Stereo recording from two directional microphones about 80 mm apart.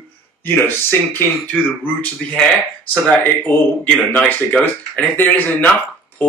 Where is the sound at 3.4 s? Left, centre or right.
Left.